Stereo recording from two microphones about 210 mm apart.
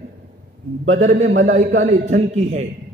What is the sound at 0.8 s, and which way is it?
Speech, 70° right (ahead or behind).